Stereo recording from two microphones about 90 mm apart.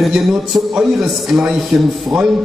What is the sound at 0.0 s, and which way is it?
A man's voice, 5° right (ahead or behind).